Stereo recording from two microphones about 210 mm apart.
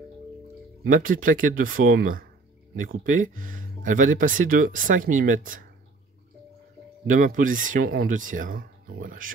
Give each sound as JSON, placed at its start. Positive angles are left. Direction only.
{"t": 0.8, "sound": "speech", "side_deg": -40}
{"t": 7.1, "sound": "speech", "side_deg": -40}